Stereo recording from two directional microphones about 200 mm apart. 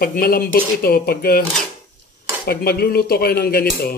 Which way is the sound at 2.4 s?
50° left (ahead or behind).